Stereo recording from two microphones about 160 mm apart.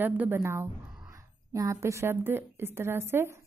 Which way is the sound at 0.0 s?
15° right (ahead or behind).